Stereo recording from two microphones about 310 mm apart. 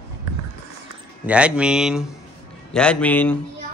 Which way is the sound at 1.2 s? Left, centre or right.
Centre.